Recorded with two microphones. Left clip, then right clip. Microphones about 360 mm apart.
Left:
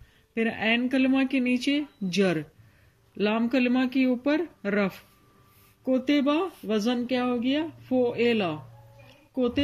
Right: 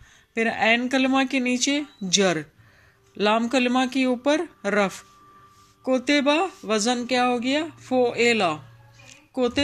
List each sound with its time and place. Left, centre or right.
0.5 s speech: right